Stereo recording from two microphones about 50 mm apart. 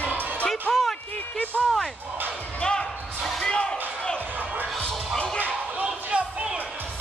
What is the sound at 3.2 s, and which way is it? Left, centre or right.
Basketball bounce, centre.